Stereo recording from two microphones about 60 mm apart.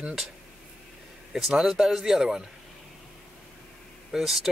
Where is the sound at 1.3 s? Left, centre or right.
Centre.